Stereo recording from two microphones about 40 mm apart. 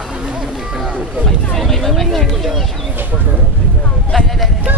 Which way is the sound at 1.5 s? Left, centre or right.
Centre.